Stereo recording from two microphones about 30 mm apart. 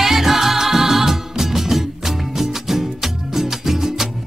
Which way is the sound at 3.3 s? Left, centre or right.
Centre.